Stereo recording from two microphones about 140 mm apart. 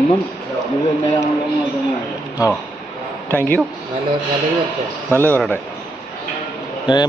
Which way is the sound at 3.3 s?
15° left (ahead or behind).